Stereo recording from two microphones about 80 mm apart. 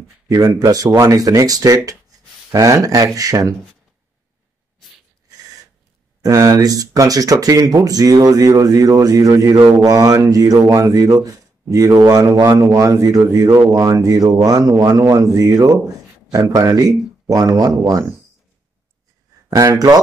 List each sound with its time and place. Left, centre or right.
0.3 s speech: right
6.2 s speech: right
19.5 s speech: right